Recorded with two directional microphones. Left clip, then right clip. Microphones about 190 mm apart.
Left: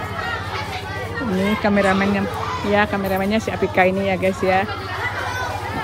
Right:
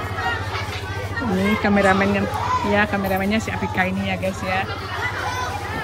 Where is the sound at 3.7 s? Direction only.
35° left (ahead or behind).